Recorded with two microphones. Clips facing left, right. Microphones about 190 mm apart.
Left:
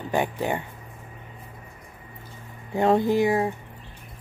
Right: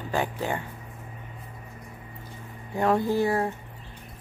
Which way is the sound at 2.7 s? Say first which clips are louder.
Left 3 dB; 25° left (ahead or behind).